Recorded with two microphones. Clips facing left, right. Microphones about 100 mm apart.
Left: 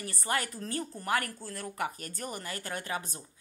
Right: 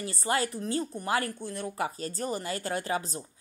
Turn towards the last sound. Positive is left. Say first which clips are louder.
# right 5 dB
turn(degrees=-30)  # may be behind; listen again after turning